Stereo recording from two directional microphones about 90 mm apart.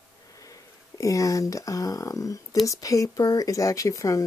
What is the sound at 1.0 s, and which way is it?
Speech, 40° left (ahead or behind).